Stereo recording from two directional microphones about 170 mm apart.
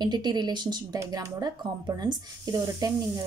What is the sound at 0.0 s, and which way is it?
Speech, 25° right (ahead or behind).